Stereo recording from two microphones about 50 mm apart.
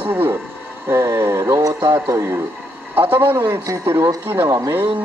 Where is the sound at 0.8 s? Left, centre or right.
Right.